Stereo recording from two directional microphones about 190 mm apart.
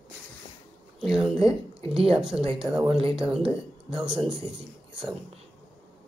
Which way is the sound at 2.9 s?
30° right (ahead or behind).